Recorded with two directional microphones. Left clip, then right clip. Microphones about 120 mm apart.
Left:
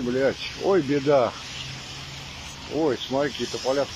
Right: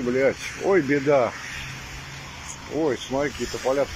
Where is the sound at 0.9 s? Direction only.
10° left (ahead or behind).